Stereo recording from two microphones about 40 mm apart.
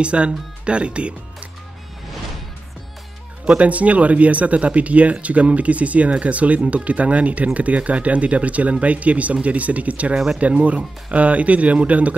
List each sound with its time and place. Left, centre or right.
0.0 s speech: right
3.4 s speech: right